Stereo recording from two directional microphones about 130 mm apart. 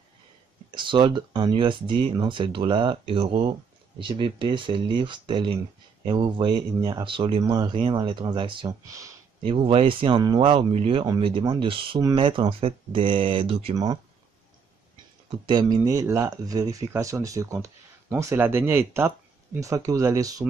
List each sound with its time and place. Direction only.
0.7 s speech: 40° right (ahead or behind)
7.4 s speech: 30° right (ahead or behind)
8.8 s speech: 25° right (ahead or behind)
9.4 s speech: 45° right (ahead or behind)
15.2 s speech: 35° right (ahead or behind)